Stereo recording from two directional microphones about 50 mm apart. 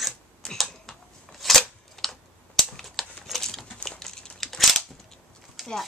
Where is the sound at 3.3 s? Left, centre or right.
Centre.